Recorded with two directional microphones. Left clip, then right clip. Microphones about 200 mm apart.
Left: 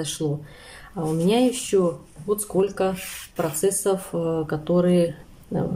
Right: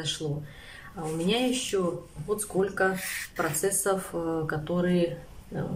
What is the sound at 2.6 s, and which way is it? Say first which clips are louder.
Speech: left 2 dB; 15° left (ahead or behind).